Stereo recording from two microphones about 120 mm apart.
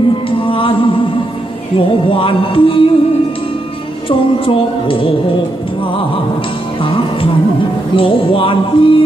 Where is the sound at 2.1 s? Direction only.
45° left (ahead or behind).